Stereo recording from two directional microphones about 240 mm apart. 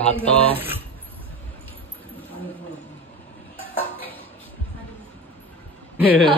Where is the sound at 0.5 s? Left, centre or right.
Centre.